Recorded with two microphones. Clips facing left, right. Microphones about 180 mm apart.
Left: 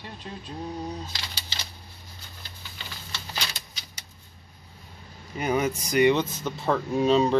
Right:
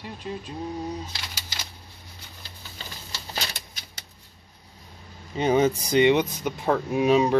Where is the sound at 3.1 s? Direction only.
45° right (ahead or behind).